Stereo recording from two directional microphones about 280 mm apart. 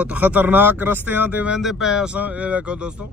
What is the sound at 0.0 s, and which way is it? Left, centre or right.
A man's voice, centre.